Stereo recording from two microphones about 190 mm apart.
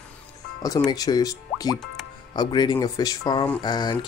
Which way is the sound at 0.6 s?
20° left (ahead or behind).